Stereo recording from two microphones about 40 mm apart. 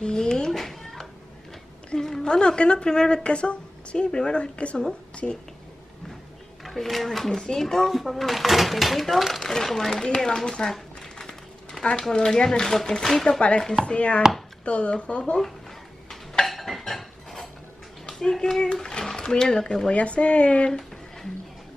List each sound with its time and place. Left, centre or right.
0.0 s cat: centre
0.5 s a sound: centre
2.3 s a woman's voice: left
5.1 s a sound: left
6.7 s a woman's voice: centre; by 15.3 s left
16.1 s dishes: centre
18.3 s speech: centre
18.6 s speech: left
19.9 s speech: left